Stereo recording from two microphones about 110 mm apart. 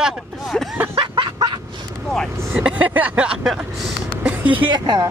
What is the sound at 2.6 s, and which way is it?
Speech, 15° right (ahead or behind).